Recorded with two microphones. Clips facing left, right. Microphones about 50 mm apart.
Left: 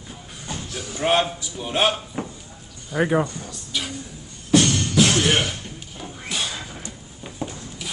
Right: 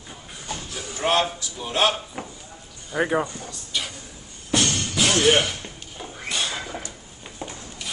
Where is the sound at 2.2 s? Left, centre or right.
Centre.